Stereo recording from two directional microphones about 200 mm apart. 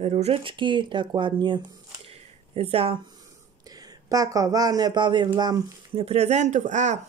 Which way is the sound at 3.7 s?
20° right (ahead or behind).